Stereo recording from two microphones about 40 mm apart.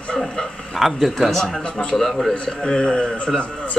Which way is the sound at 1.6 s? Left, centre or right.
Left.